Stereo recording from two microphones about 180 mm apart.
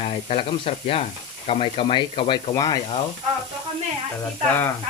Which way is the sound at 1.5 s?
30° left (ahead or behind).